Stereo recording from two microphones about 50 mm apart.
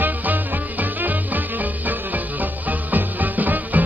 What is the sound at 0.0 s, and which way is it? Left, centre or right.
Music, right.